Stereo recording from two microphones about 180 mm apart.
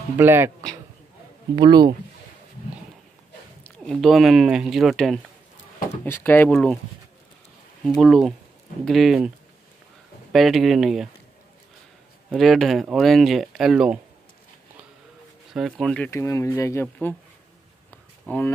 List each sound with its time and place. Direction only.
0.2 s speech: 10° right (ahead or behind)
1.5 s speech: 25° right (ahead or behind)
3.6 s speech: 5° left (ahead or behind)
6.0 s speech: 10° left (ahead or behind)
6.5 s speech: centre (ahead or behind)
7.8 s speech: centre (ahead or behind)
10.3 s speech: centre (ahead or behind)
12.3 s speech: centre (ahead or behind)
15.5 s speech: centre (ahead or behind)
16.1 s speech: 15° left (ahead or behind)
18.3 s speech: 10° left (ahead or behind)